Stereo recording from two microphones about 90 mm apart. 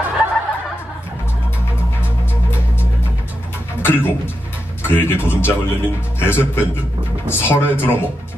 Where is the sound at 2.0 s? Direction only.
25° left (ahead or behind).